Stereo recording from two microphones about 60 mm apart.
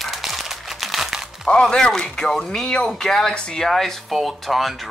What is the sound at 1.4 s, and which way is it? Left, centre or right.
Speech, centre.